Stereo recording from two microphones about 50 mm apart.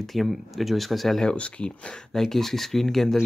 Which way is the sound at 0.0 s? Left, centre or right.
Centre.